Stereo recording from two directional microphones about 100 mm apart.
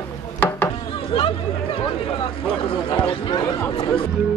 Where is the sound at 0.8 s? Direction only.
65° left (ahead or behind).